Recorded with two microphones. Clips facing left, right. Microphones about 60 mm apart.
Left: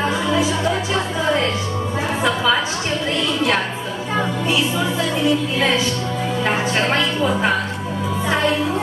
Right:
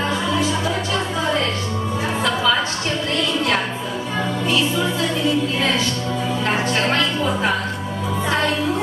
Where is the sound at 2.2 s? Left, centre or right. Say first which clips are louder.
Left 1 dB; centre.